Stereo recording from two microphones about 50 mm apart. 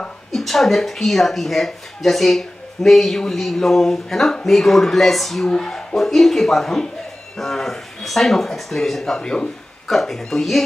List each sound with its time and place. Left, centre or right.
0.3 s speech: centre
5.5 s speech: centre